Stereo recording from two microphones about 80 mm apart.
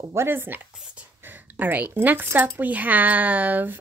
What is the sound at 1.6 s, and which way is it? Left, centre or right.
Speech, right.